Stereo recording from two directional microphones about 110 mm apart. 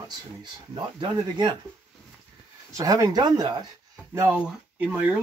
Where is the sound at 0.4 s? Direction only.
45° right (ahead or behind).